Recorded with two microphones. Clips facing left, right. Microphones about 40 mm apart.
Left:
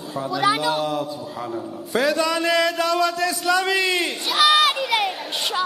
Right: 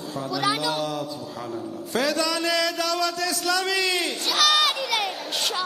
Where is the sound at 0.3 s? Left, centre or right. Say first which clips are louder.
Left 5 dB; centre.